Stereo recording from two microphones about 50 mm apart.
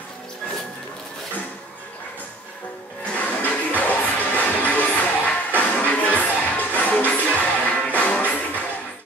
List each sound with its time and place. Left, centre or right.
3.2 s music: left